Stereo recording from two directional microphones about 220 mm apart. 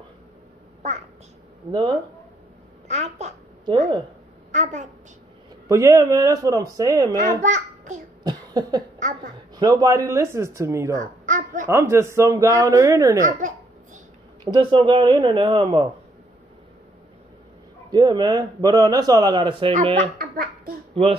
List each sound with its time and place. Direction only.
1.7 s a man's voice: 20° right (ahead or behind)
2.9 s a child's voice: 30° right (ahead or behind)
5.7 s speech: 15° right (ahead or behind)
7.4 s a child's voice: 35° right (ahead or behind)
8.2 s cough: 20° right (ahead or behind)
9.6 s speech: 15° right (ahead or behind)
11.0 s a sound: 35° right (ahead or behind)
11.6 s speech: 10° right (ahead or behind)
14.4 s a man's voice: 20° right (ahead or behind)
17.9 s a man's voice: 20° right (ahead or behind)
20.2 s a child's voice: 40° right (ahead or behind)
20.9 s speech: 25° right (ahead or behind)